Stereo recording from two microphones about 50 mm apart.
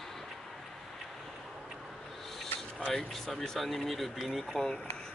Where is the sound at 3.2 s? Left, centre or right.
Centre.